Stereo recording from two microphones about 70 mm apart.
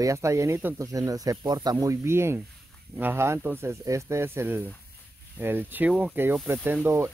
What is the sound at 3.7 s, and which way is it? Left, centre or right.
Speech, right.